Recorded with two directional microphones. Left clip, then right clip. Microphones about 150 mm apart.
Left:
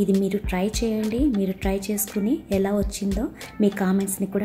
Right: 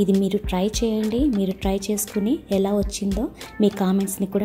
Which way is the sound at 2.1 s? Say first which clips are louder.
Right 1 dB; centre (ahead or behind).